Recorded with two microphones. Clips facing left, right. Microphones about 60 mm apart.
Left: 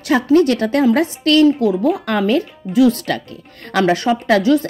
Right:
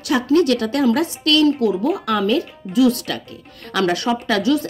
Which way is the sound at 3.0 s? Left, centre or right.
Left.